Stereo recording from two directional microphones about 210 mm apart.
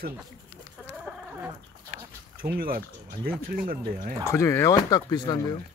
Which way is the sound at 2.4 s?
45° right (ahead or behind).